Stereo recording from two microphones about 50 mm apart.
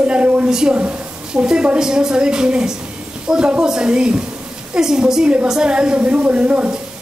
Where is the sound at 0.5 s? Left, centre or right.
Centre.